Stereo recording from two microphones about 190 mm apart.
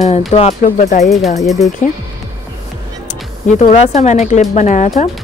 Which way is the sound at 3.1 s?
35° left (ahead or behind).